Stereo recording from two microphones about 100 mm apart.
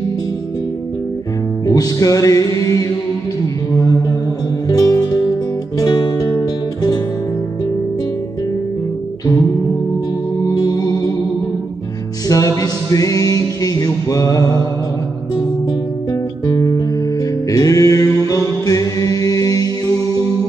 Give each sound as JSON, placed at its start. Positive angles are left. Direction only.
{"t": 1.7, "sound": "music", "side_deg": 35}
{"t": 3.7, "sound": "mantra", "side_deg": 35}
{"t": 4.6, "sound": "music", "side_deg": 35}
{"t": 10.4, "sound": "music", "side_deg": 40}
{"t": 12.3, "sound": "music", "side_deg": 35}
{"t": 16.1, "sound": "music", "side_deg": 35}